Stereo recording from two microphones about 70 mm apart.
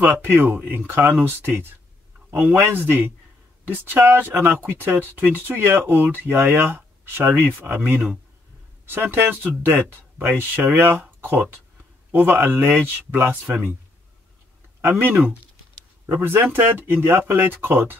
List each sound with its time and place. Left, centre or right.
0.0 s speech: right
14.8 s speech: right